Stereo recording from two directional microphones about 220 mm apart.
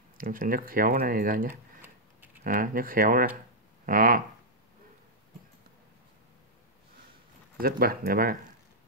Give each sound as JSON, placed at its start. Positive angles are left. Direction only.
{"t": 0.2, "sound": "speech", "side_deg": -40}
{"t": 7.6, "sound": "speech", "side_deg": -40}